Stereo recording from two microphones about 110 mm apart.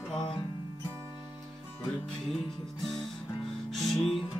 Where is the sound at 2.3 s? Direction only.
5° left (ahead or behind).